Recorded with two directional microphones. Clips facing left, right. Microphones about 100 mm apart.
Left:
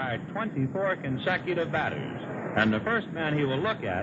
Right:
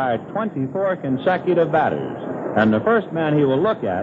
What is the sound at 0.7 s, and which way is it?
Speech, 25° right (ahead or behind).